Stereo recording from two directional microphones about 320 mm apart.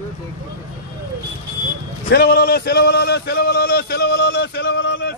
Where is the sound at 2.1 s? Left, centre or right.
Left.